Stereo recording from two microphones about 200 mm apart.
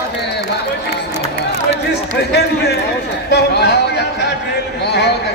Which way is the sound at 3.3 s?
55° left (ahead or behind).